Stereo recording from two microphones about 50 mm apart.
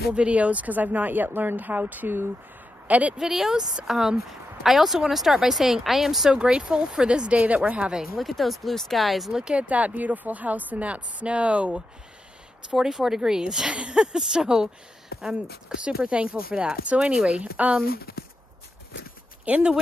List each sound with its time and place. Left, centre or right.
0.1 s speech: right
3.2 s speech: centre
6.3 s speech: right
8.2 s speech: centre
9.3 s speech: centre
9.7 s speech: right
12.7 s speech: centre; by 17.8 s right
19.5 s speech: right